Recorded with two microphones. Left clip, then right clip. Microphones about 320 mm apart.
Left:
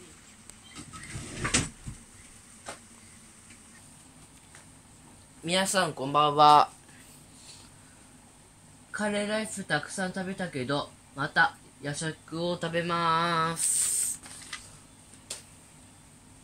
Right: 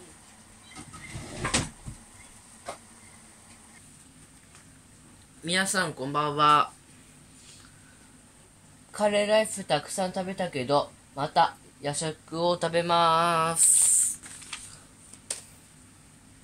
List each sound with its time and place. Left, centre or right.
5.4 s speech: centre
8.9 s a woman's voice: centre